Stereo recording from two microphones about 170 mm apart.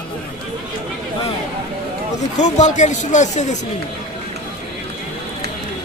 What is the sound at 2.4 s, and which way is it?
Speech, 45° left (ahead or behind).